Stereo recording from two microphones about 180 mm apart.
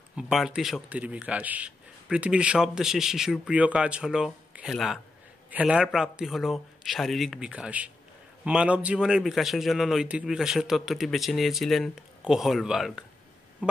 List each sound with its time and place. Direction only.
0.1 s speech: centre (ahead or behind)